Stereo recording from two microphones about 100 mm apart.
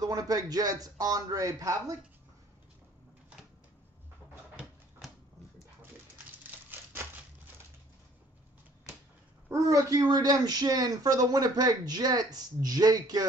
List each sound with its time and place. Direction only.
0.0 s speech: 35° right (ahead or behind)
5.0 s a sound: centre (ahead or behind)
9.5 s speech: 35° right (ahead or behind)